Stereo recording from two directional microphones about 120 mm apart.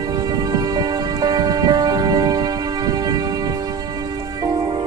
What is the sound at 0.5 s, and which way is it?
Music, 35° right (ahead or behind).